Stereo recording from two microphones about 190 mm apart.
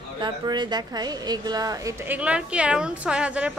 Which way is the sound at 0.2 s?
25° right (ahead or behind).